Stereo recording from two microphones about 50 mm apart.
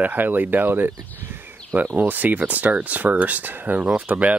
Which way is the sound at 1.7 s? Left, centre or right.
Right.